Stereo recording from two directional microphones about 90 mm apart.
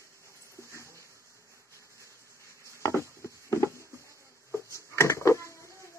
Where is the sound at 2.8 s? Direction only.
30° left (ahead or behind).